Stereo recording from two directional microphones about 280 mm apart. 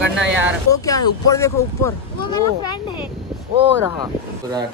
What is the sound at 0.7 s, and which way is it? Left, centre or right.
Speech, centre.